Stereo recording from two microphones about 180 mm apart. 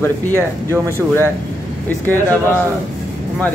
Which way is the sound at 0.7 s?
15° right (ahead or behind).